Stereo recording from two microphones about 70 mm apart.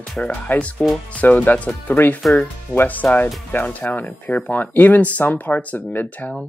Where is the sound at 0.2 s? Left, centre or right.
Centre.